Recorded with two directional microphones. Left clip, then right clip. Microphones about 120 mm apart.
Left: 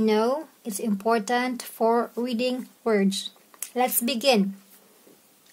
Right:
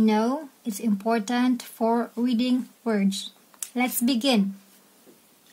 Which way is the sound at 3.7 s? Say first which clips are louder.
Left 1 dB; 90° left.